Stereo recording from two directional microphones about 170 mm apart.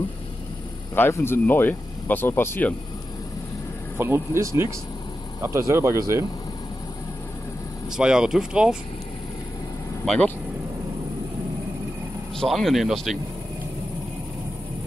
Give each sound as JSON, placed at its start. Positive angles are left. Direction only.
{"t": 0.9, "sound": "speech", "side_deg": 15}
{"t": 4.0, "sound": "speech", "side_deg": -15}
{"t": 7.9, "sound": "speech", "side_deg": -5}
{"t": 10.0, "sound": "speech", "side_deg": 5}
{"t": 12.4, "sound": "speech", "side_deg": 0}